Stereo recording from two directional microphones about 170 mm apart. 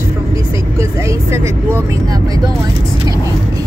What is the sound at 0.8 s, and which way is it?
Speech, 15° right (ahead or behind).